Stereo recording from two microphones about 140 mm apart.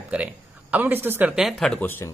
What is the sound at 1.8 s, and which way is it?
Speech, 15° left (ahead or behind).